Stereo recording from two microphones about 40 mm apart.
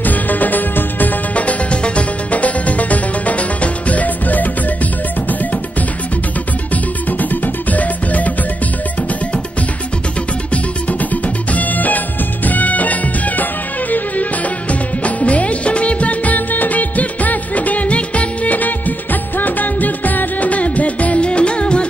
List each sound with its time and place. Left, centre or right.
0.0 s music: left
1.3 s music: left
6.7 s music: left
10.5 s music: left
14.7 s music of bollywood: left